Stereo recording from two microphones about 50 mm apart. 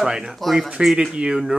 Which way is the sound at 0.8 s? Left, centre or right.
Centre.